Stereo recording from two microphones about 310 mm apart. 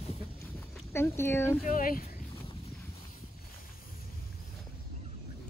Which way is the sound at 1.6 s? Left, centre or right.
Left.